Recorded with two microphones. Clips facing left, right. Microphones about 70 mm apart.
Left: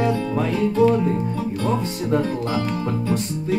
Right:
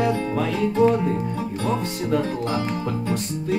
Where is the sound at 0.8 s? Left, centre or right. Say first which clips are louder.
Left 1 dB; right.